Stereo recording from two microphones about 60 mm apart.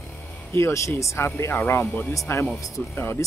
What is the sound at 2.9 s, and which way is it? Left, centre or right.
Speech, left.